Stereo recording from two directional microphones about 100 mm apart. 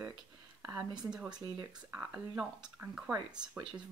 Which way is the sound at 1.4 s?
30° right (ahead or behind).